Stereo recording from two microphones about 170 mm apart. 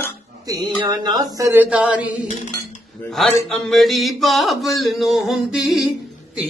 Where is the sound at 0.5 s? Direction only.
25° right (ahead or behind).